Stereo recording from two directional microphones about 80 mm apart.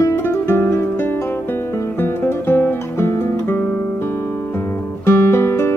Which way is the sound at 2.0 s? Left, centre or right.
Left.